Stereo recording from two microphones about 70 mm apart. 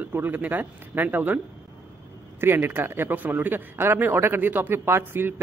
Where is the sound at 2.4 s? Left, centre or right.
Right.